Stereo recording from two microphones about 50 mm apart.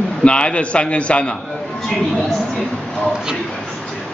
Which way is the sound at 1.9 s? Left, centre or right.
Centre.